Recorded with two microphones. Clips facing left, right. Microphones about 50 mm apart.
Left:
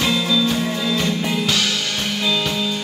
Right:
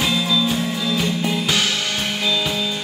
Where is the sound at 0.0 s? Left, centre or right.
Centre.